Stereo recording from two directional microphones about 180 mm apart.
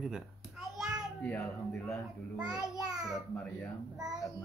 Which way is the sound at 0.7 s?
Centre (ahead or behind).